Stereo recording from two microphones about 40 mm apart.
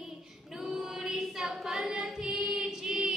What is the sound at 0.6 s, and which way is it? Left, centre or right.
Female singing, centre.